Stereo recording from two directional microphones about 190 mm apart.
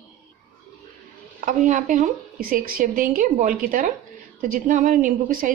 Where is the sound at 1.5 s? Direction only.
40° right (ahead or behind).